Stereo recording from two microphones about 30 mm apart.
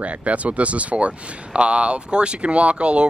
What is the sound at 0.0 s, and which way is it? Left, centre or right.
Speech, right.